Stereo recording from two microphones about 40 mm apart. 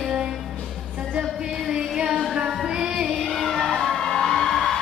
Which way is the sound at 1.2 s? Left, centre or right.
Centre.